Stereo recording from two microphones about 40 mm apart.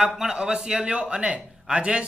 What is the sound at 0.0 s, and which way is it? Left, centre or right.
Speech, centre.